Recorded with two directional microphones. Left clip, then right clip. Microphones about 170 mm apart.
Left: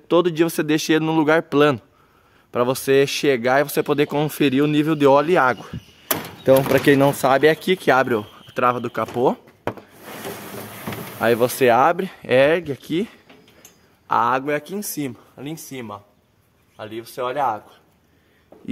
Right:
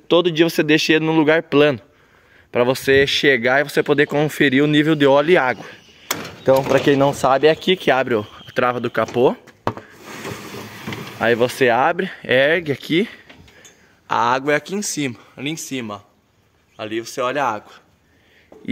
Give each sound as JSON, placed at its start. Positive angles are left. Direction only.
{"t": 0.1, "sound": "speech", "side_deg": 0}
{"t": 6.4, "sound": "speech", "side_deg": 20}
{"t": 7.2, "sound": "speech", "side_deg": 5}
{"t": 11.1, "sound": "speech", "side_deg": 0}